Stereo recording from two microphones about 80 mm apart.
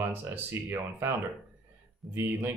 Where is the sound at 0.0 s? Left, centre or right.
Right.